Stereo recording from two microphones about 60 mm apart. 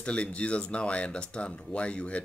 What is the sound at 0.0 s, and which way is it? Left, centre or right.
Speech, centre.